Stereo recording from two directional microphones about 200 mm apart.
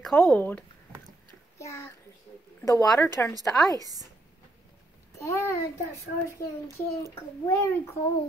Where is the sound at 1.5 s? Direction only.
15° left (ahead or behind).